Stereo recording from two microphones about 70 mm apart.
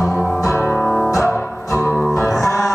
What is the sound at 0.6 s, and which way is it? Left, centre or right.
Music, centre.